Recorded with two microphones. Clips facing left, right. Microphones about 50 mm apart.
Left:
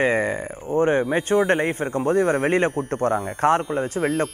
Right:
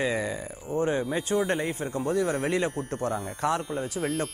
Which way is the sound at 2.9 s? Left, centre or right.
Left.